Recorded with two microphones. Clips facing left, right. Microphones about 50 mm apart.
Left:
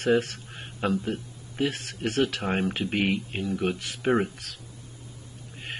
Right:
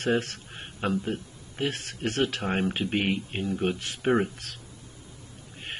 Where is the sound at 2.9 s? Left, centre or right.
Right.